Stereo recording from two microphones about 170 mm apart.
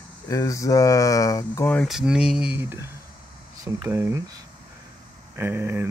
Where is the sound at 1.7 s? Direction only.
Centre (ahead or behind); by 4.2 s 15° right (ahead or behind).